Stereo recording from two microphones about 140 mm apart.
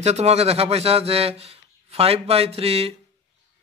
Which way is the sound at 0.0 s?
50° right (ahead or behind).